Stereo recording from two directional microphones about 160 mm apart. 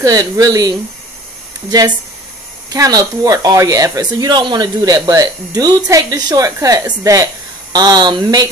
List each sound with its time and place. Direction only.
0.0 s speech: 20° right (ahead or behind)